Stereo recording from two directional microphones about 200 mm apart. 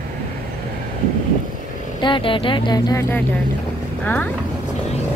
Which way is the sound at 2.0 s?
25° left (ahead or behind).